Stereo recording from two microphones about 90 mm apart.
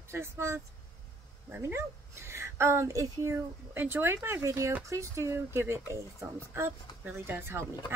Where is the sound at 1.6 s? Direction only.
30° right (ahead or behind).